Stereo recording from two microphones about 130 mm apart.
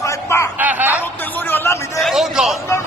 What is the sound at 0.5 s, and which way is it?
Snicker, 15° right (ahead or behind).